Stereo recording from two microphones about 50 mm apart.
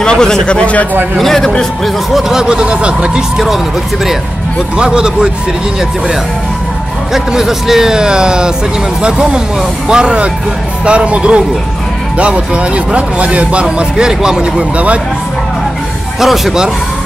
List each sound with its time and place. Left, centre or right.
0.0 s speech: centre
1.1 s a man's voice: centre
2.1 s speech: centre
4.7 s speech: centre
7.3 s speech: centre; by 15.0 s right
16.2 s speech: centre